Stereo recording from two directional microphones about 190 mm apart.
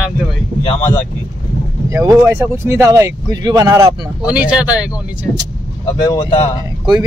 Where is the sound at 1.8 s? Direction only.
15° right (ahead or behind).